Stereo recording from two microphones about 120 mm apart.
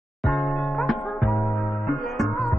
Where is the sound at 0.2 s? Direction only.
5° left (ahead or behind).